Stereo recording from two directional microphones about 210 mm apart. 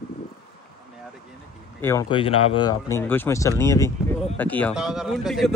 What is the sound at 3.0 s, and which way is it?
Speech, 10° left (ahead or behind).